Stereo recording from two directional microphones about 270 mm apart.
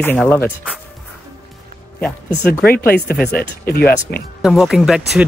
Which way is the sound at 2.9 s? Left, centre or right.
Left.